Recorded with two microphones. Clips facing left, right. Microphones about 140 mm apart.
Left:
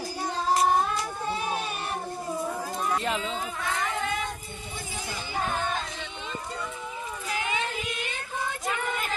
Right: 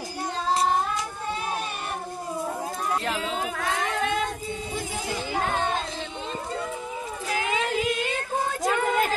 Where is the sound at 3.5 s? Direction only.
80° right.